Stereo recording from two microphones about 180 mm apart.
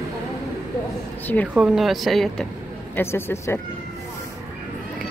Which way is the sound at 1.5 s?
5° right (ahead or behind).